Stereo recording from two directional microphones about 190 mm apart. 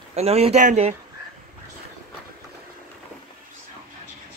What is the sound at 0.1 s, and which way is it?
Speech, 35° right (ahead or behind).